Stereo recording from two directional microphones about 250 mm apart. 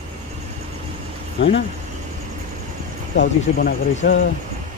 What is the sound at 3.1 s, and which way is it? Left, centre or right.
Speech, left.